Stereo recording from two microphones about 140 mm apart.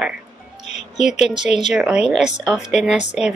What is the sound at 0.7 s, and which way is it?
Music, 55° left (ahead or behind).